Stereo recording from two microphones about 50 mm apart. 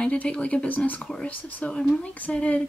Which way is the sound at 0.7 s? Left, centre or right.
Left.